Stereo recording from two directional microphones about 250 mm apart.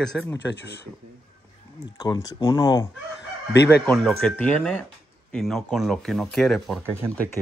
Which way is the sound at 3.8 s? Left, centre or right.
Centre.